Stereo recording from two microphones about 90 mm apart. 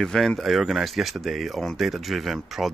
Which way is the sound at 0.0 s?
5° left (ahead or behind).